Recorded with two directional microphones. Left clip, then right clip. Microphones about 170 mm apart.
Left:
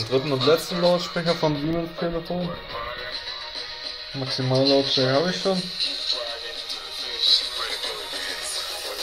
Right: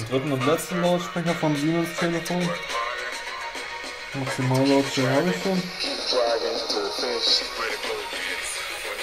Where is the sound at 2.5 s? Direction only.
40° right (ahead or behind).